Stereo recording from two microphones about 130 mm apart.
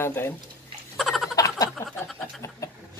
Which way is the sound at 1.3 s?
25° left (ahead or behind).